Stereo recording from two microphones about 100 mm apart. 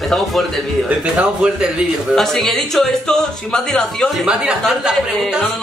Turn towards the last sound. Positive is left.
turn(degrees=0)  # may be behind; listen again after turning